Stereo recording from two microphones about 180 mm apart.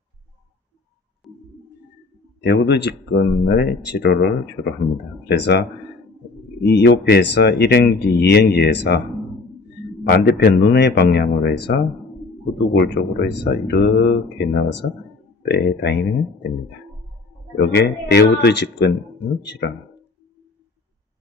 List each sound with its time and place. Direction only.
2.4 s a man's voice: 75° left (ahead or behind)
17.6 s speech: 65° left (ahead or behind)